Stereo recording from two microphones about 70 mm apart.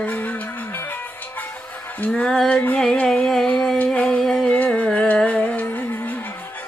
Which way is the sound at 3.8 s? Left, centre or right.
Centre.